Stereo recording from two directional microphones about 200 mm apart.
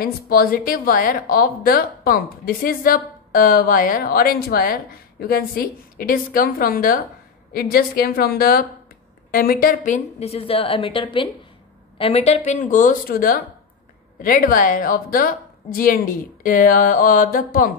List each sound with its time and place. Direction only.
0.0 s a woman's voice: 45° left (ahead or behind)